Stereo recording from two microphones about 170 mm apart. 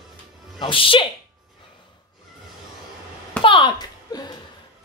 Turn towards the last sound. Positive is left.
turn(degrees=25)  # may be behind; listen again after turning